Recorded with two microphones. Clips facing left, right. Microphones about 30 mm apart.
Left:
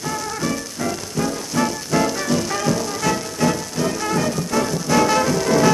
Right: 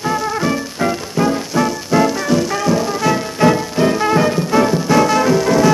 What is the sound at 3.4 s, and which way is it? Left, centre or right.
Music, right.